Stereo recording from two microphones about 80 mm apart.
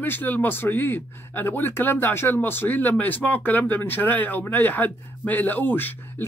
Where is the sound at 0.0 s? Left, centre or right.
Left.